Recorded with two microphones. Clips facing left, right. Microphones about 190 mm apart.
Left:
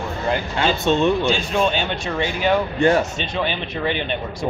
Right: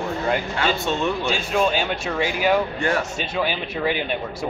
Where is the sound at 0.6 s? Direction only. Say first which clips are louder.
Left 4 dB; 25° left (ahead or behind).